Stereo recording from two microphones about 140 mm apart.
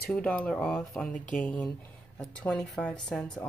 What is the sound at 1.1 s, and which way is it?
Speech, 70° left (ahead or behind).